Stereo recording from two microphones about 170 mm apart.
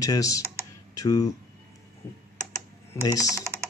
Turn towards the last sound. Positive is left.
turn(degrees=-15)  # may be behind; listen again after turning